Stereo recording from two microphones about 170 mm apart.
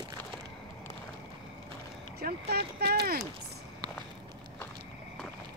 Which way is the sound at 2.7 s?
70° right (ahead or behind).